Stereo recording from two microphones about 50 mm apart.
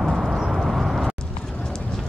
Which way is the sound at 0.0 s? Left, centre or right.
Centre.